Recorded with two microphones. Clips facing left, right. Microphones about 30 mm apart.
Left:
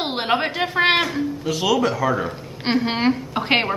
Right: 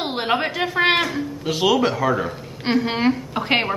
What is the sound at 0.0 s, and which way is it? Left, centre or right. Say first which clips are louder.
A woman's voice: even; centre.